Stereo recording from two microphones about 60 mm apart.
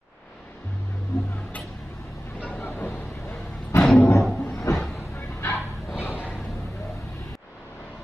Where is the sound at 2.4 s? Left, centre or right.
Left.